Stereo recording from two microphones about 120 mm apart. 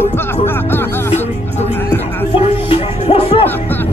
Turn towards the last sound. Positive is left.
turn(degrees=55)  # may be behind; listen again after turning